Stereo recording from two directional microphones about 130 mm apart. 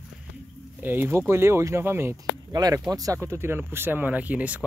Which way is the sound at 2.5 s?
30° right (ahead or behind).